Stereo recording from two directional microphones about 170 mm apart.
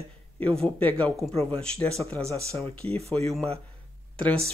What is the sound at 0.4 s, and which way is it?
Speech, 5° left (ahead or behind).